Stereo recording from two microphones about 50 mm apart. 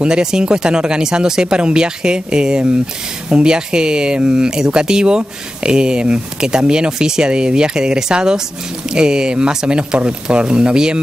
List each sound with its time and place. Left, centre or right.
0.0 s speech: centre